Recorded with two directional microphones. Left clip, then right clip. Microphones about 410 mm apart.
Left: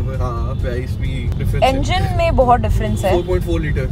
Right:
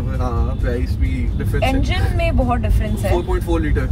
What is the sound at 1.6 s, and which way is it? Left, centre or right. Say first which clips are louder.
Speech: left 5 dB; centre.